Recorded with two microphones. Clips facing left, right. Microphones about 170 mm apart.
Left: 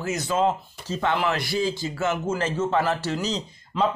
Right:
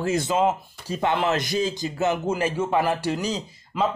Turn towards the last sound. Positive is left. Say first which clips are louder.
# even
turn(degrees=-5)  # may be behind; listen again after turning